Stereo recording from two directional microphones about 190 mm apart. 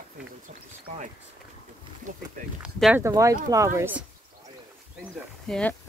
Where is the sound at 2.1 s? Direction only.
45° right (ahead or behind).